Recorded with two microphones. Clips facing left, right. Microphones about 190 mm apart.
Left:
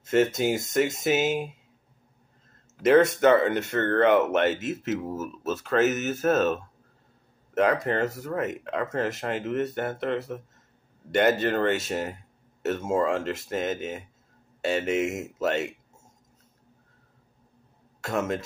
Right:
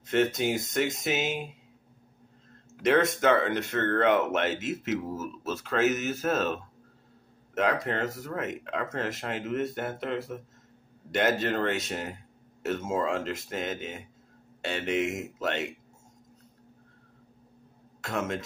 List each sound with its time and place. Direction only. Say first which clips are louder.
0.1 s speech: left 3 dB; 5° left (ahead or behind)
3.0 s speech: left 5 dB; centre (ahead or behind)
18.0 s speech: left 4 dB; centre (ahead or behind)